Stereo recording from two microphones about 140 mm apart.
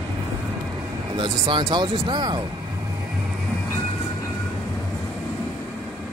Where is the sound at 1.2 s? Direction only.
35° right (ahead or behind).